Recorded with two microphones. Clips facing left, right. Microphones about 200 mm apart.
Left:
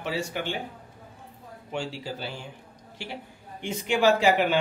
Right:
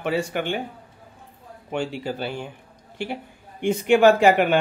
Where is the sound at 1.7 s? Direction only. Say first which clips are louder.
Right 6 dB; 55° right (ahead or behind).